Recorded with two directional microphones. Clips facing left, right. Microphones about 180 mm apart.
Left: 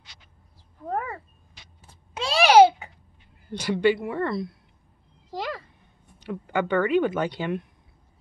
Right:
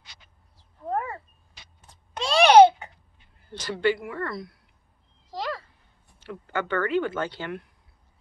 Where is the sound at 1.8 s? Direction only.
5° left (ahead or behind).